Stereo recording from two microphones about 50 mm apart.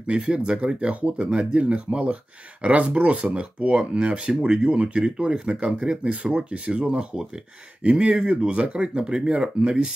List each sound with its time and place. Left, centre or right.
0.0 s speech: right